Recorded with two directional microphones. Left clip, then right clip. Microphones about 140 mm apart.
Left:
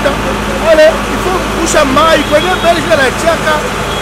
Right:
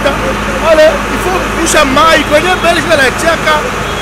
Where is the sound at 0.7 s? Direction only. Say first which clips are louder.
Even; 10° right (ahead or behind).